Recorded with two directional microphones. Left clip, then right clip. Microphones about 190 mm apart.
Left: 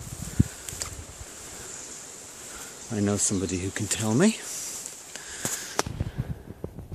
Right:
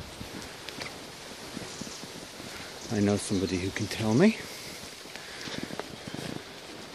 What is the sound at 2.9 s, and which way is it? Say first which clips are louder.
Speech: left 1 dB; 20° left (ahead or behind).